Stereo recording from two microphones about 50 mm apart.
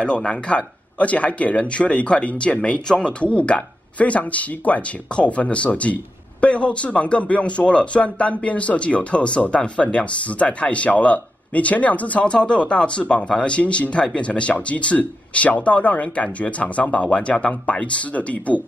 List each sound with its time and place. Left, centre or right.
0.0 s speech: centre